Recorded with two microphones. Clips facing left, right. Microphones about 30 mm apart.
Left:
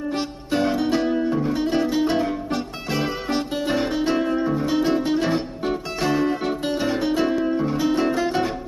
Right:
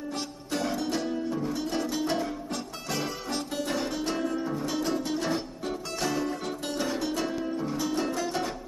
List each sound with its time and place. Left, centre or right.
0.1 s music: left